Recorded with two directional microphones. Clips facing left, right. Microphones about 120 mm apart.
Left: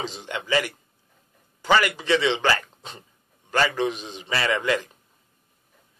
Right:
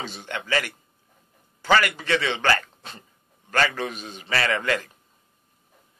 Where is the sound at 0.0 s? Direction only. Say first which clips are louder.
Left 2 dB; 15° left (ahead or behind).